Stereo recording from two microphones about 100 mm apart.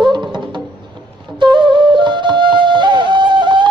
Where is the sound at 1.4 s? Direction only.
50° right (ahead or behind).